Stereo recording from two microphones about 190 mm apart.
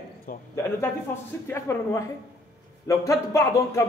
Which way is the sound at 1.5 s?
15° left (ahead or behind).